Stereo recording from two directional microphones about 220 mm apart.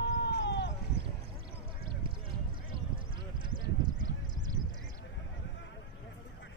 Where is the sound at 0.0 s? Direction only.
50° left (ahead or behind).